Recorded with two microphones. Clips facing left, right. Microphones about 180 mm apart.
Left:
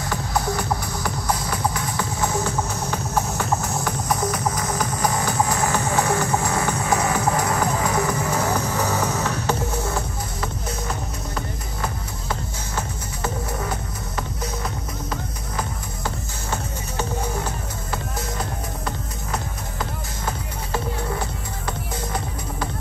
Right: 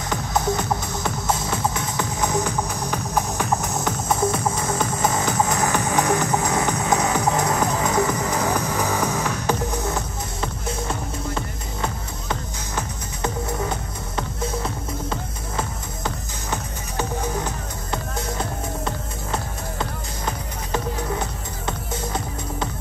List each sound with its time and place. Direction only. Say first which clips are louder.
0.1 s music: right 2 dB; 20° right (ahead or behind)
11.3 s music: right 1 dB; 20° right (ahead or behind)
21.6 s music: right 1 dB; 25° right (ahead or behind)